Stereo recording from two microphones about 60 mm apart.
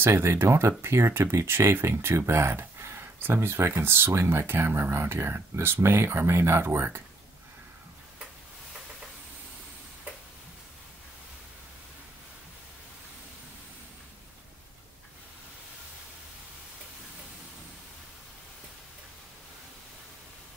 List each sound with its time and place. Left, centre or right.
0.0 s speech: right